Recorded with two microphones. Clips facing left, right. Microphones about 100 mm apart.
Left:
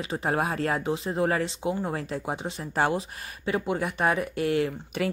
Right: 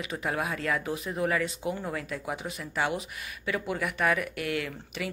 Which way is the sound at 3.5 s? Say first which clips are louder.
Left 4 dB; 30° left (ahead or behind).